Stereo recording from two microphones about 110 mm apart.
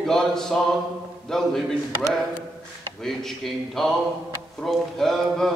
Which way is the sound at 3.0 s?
5° left (ahead or behind).